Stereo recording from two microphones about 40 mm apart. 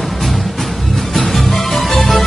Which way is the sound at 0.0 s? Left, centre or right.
Centre.